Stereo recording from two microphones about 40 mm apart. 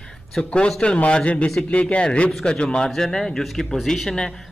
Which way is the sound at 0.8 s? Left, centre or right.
Left.